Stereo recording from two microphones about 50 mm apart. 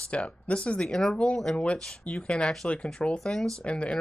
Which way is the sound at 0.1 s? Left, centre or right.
Left.